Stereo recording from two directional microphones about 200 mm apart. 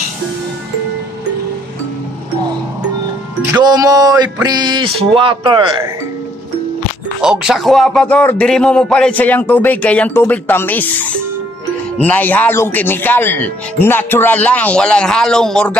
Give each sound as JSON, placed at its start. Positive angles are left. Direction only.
{"t": 3.5, "sound": "speech", "side_deg": -20}
{"t": 7.2, "sound": "speech", "side_deg": -5}